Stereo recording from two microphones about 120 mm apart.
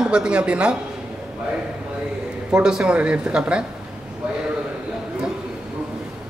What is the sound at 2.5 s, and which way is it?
Speech, 5° right (ahead or behind).